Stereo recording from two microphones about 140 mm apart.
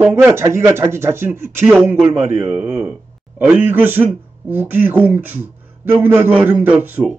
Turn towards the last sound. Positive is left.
turn(degrees=-15)  # may be behind; listen again after turning